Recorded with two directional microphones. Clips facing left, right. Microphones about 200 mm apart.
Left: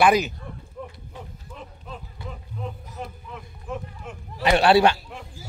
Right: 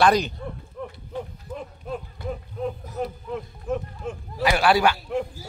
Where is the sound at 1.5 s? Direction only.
45° right (ahead or behind).